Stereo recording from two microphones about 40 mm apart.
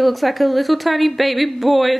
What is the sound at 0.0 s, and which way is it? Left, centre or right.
A woman's voice, centre.